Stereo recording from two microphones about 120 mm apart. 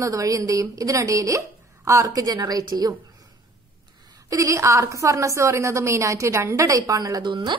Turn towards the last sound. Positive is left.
turn(degrees=-35)  # may be behind; listen again after turning